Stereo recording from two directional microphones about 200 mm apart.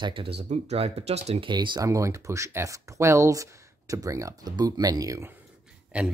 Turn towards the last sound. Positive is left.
turn(degrees=-5)  # may be behind; listen again after turning